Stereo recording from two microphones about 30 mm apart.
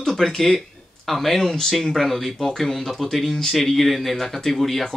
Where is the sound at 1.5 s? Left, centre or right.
Centre.